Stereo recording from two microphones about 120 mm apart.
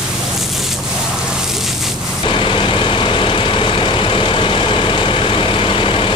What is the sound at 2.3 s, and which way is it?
Vehicle, 45° left (ahead or behind).